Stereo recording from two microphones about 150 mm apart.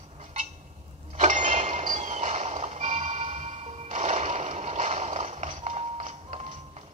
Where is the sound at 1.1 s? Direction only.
50° right (ahead or behind).